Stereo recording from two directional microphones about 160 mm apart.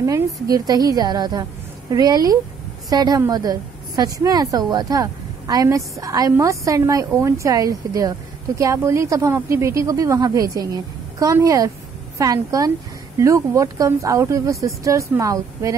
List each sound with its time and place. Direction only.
0.0 s a woman's voice: 20° right (ahead or behind)